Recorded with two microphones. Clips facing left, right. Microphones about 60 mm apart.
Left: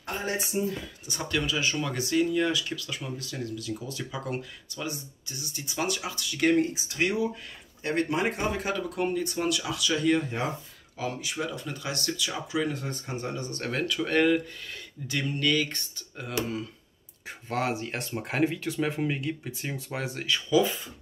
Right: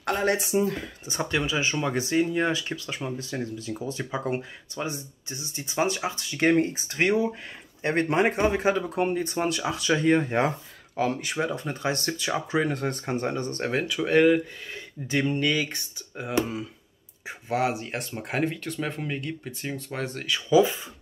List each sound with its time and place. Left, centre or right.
0.0 s speech: right
1.0 s speech: right
13.6 s speech: centre
15.0 s speech: right
17.5 s speech: centre
20.4 s speech: centre